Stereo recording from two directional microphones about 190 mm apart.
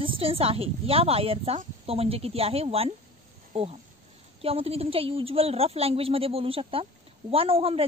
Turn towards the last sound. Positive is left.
turn(degrees=-30)  # may be behind; listen again after turning